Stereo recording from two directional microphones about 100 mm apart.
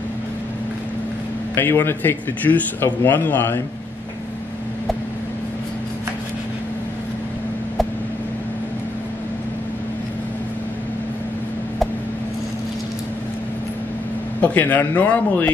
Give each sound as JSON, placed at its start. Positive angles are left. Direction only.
{"t": 1.5, "sound": "speech", "side_deg": 20}
{"t": 14.4, "sound": "a man's voice", "side_deg": 15}